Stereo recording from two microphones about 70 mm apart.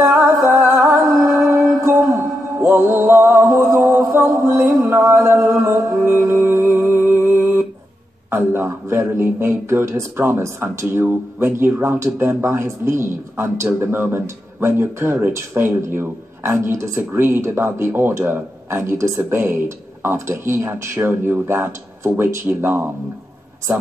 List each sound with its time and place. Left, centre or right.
0.2 s music: right
8.3 s a sound: right
9.1 s speech: right